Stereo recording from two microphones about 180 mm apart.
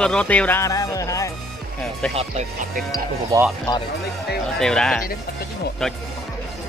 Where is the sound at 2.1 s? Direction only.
35° right (ahead or behind).